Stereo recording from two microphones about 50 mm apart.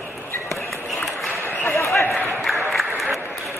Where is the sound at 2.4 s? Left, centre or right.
Centre.